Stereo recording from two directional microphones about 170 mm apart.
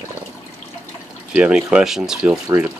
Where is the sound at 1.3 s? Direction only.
5° right (ahead or behind).